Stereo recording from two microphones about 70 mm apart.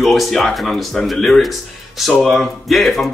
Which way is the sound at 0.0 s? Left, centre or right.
Centre.